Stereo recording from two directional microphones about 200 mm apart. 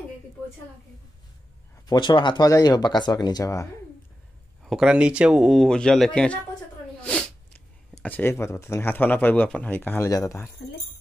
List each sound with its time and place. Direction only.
1.9 s speech: 25° left (ahead or behind)
4.6 s speech: 5° right (ahead or behind)
7.0 s cat: 5° left (ahead or behind)
8.0 s speech: 10° left (ahead or behind)